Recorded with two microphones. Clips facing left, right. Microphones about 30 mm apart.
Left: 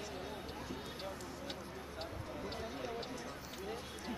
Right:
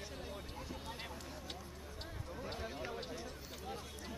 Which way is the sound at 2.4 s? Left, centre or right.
Centre.